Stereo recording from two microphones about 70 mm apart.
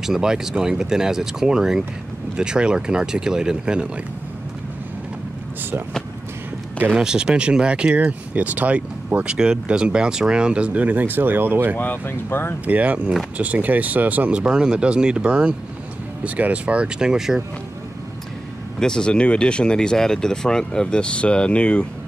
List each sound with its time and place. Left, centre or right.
0.0 s speech: centre
7.0 s speech: centre; by 11.7 s right
11.7 s speech: left
12.6 s speech: right
14.4 s speech: centre
18.8 s speech: centre